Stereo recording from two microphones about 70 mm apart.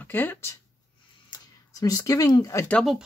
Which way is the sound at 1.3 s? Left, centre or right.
Left.